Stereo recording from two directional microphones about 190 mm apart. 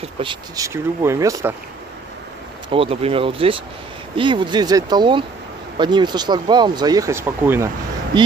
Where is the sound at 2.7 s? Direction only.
30° right (ahead or behind); by 7.7 s 10° right (ahead or behind).